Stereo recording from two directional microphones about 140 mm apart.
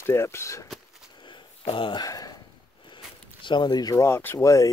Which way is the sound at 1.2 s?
35° left (ahead or behind).